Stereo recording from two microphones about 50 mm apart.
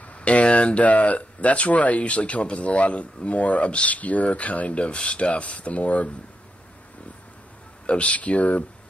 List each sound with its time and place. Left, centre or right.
0.0 s speech: left
7.8 s speech: left